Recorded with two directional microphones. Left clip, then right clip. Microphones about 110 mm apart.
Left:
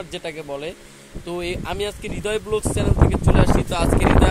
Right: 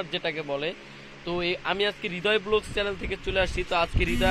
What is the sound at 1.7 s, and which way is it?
Speech, 25° left (ahead or behind).